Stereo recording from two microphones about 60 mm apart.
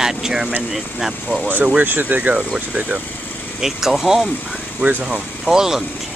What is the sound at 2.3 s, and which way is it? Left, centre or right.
Speech, centre.